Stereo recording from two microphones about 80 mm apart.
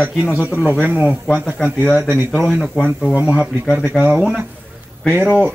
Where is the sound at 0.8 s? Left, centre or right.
Centre.